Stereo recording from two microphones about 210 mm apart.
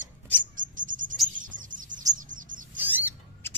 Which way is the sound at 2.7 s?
10° right (ahead or behind).